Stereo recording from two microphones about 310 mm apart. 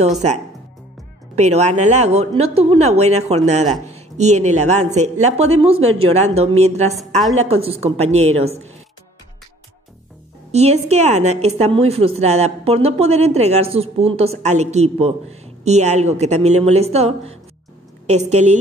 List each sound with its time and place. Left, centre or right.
1.3 s a woman's voice: right
10.5 s a woman's voice: right